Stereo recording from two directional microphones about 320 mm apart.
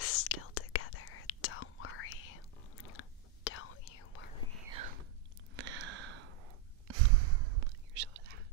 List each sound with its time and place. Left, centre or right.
0.0 s whispering: left
5.6 s a sound: right
6.9 s whispering: right